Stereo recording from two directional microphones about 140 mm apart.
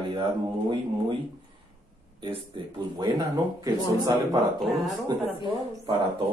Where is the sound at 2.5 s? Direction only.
35° right (ahead or behind).